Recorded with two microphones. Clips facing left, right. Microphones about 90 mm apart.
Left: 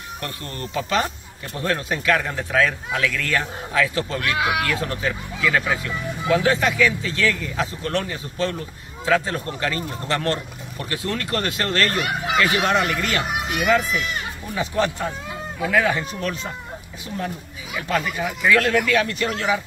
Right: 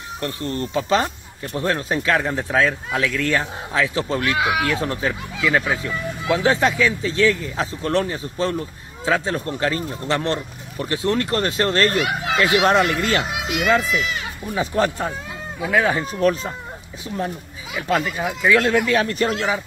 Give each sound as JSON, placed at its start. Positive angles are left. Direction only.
{"t": 0.2, "sound": "speech", "side_deg": -30}
{"t": 4.3, "sound": "speech", "side_deg": 0}
{"t": 4.7, "sound": "speech", "side_deg": -30}
{"t": 13.2, "sound": "a child's voice", "side_deg": -90}
{"t": 14.5, "sound": "speech", "side_deg": -35}
{"t": 17.7, "sound": "speech", "side_deg": -30}
{"t": 18.2, "sound": "speech", "side_deg": -20}
{"t": 18.9, "sound": "speech", "side_deg": -35}